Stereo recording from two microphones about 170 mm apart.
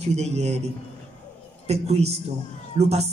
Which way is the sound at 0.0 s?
40° right (ahead or behind).